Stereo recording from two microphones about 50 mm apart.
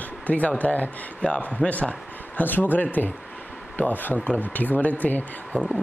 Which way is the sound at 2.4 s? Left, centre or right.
Left.